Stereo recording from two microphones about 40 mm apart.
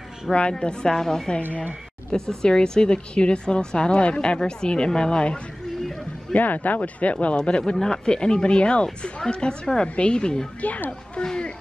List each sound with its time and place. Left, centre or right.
0.3 s a woman's voice: left
6.3 s speech: left
7.3 s a woman's voice: left
10.6 s speech: left
11.2 s a woman's voice: left